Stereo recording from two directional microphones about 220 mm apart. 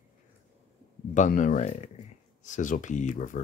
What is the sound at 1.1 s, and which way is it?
Speech, 35° left (ahead or behind).